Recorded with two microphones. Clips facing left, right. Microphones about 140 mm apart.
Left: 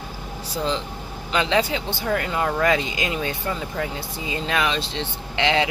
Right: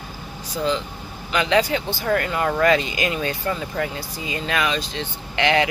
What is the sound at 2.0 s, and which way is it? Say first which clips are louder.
Speech: right 2 dB; 10° left (ahead or behind).